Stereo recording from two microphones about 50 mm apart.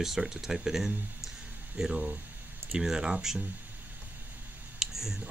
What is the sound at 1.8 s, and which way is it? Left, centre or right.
Speech, centre.